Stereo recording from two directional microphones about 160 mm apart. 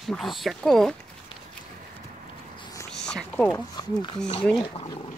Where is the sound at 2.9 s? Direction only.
5° left (ahead or behind).